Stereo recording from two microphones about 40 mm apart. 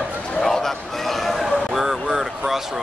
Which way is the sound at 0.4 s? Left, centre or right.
Centre.